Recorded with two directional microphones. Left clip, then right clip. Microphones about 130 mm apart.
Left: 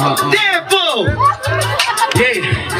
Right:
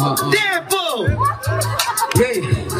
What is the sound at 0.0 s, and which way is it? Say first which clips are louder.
Speech: left 4 dB; 25° right (ahead or behind).